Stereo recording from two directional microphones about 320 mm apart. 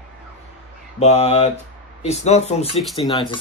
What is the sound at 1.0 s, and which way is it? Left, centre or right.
Speech, centre.